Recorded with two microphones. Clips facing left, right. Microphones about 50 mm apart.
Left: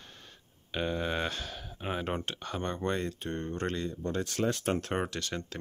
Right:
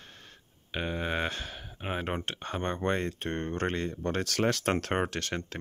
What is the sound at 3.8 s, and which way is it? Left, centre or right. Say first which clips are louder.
Speech: right 2 dB; right.